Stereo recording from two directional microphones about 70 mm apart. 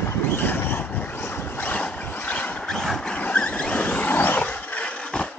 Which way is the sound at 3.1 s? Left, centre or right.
Left.